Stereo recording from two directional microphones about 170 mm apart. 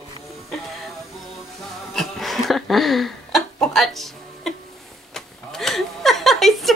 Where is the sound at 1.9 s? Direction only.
Centre (ahead or behind).